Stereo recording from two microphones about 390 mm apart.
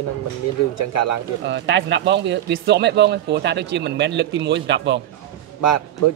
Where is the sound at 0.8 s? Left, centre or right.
Left.